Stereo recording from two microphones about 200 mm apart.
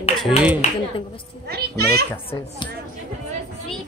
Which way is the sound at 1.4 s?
50° right (ahead or behind).